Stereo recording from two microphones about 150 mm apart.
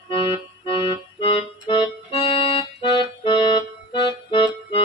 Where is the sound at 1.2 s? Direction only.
35° left (ahead or behind).